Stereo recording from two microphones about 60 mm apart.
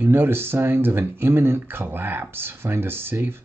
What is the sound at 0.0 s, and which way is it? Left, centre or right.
Speech, right.